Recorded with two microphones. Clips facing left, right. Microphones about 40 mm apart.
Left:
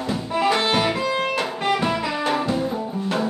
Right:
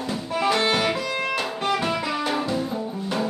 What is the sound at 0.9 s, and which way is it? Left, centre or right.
Music, left.